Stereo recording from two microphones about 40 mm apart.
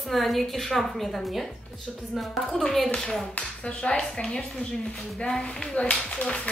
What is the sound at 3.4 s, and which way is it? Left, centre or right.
Speech, left.